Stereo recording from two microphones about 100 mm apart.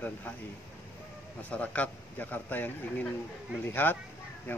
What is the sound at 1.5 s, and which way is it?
A man's voice, 15° left (ahead or behind).